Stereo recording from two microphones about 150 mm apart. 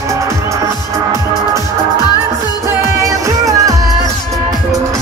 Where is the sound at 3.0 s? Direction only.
20° right (ahead or behind).